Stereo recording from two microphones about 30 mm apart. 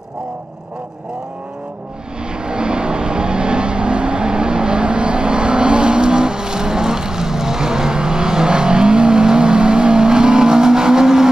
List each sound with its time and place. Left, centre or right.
2.3 s vehicle: right